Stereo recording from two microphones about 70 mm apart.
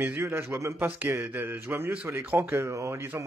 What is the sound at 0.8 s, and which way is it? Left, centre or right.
A man's voice, right.